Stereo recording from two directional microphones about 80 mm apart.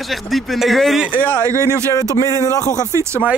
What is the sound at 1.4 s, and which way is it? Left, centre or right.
Speech, right.